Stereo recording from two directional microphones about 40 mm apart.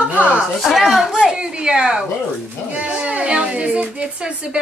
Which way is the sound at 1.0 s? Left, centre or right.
Centre.